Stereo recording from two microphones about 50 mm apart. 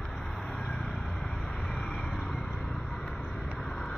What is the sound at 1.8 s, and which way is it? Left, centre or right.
Vehicle, centre.